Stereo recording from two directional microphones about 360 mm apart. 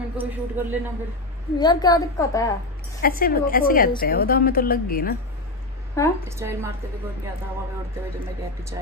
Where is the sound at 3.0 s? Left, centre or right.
Left.